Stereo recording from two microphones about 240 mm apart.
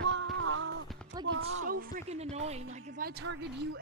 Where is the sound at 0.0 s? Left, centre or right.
Right.